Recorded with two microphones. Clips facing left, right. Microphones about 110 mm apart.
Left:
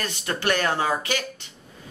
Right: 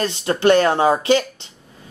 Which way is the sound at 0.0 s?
25° right (ahead or behind).